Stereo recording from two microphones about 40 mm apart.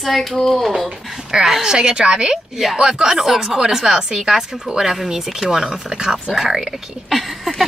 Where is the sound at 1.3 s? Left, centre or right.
Right.